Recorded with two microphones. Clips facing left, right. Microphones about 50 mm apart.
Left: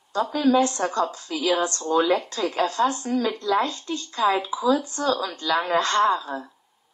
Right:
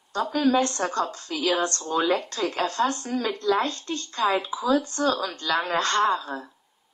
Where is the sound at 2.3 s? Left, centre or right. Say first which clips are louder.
Left 2 dB; right.